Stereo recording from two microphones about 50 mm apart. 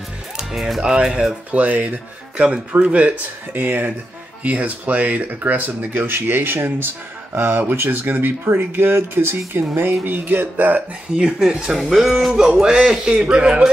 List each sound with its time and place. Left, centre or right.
0.6 s speech: centre
0.8 s speech: centre
1.5 s speech: right
3.5 s speech: right
4.4 s speech: right
6.0 s speech: right
11.1 s a man's voice: centre